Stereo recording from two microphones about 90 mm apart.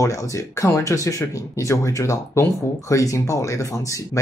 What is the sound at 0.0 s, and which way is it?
Speech, 35° left (ahead or behind).